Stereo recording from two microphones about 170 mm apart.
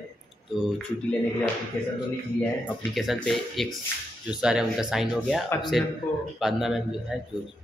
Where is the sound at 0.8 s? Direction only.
5° left (ahead or behind).